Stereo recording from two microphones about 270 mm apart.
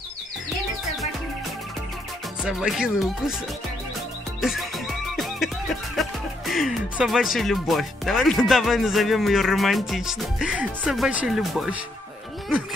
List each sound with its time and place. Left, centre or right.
2.4 s speech: centre
4.4 s music: centre
5.9 s speech: centre